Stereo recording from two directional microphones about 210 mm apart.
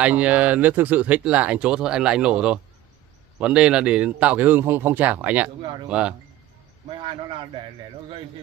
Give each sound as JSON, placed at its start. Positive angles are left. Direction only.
{"t": 0.0, "sound": "speech", "side_deg": -5}
{"t": 7.0, "sound": "a man's voice", "side_deg": -25}